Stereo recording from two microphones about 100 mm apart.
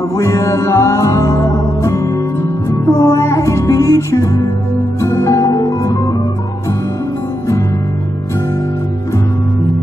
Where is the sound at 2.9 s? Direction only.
30° left (ahead or behind).